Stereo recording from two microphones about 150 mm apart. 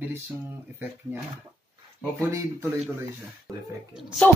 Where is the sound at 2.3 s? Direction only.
20° right (ahead or behind).